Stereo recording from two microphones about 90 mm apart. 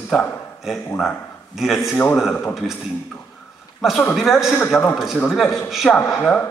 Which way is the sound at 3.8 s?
Centre (ahead or behind).